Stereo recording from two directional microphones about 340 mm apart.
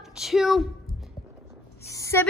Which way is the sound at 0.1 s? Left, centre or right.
Centre.